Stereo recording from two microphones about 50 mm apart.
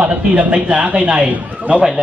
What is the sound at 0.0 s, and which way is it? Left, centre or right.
A man's voice, right.